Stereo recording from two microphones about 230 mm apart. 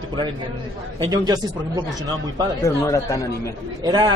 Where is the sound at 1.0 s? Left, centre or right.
Centre.